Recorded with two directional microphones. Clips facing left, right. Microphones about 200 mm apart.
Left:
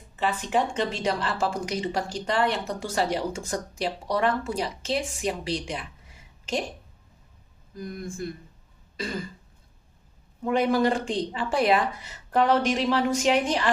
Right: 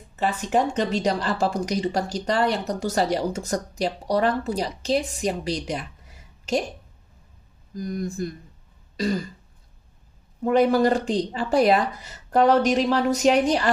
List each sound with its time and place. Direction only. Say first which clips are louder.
0.1 s speech: right 3 dB; 40° right (ahead or behind)
7.7 s speech: right 6 dB; 40° right (ahead or behind)
8.9 s throat clearing: right 7 dB; 40° right (ahead or behind)
10.4 s speech: right 4 dB; 40° right (ahead or behind)